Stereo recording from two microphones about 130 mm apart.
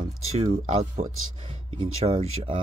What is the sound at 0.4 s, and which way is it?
Speech, 50° right (ahead or behind).